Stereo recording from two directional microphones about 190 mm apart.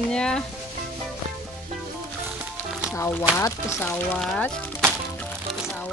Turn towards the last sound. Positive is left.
turn(degrees=5)  # may be behind; listen again after turning